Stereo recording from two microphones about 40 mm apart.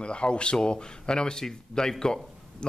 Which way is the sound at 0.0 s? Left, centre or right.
Left.